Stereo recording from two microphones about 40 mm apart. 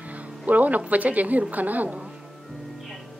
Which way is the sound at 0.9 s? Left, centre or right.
Right.